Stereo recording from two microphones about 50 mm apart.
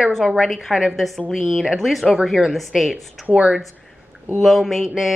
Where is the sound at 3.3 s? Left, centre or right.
Centre.